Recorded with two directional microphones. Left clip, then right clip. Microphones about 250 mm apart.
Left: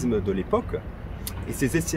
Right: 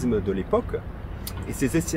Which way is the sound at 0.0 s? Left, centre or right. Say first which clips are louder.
Even; centre.